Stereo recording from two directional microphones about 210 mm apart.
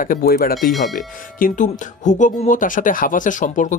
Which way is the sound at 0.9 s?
40° left (ahead or behind).